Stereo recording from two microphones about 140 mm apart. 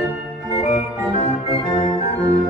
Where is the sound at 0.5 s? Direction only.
45° left (ahead or behind).